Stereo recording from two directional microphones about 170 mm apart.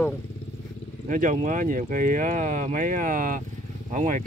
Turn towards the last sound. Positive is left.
turn(degrees=-45)  # may be behind; listen again after turning